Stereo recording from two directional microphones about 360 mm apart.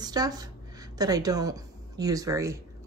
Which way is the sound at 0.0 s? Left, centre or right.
Centre.